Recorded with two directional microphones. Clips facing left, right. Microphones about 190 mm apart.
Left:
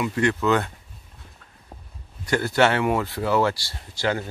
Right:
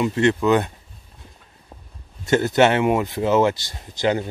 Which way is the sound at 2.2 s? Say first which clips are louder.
Right 4 dB; 20° right (ahead or behind).